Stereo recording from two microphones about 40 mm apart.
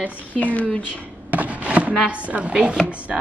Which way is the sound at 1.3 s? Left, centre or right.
Right.